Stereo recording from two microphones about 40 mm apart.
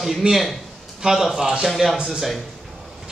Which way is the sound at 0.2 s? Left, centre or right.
Right.